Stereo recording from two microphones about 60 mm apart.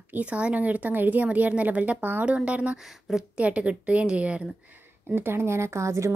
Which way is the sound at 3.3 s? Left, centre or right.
Right.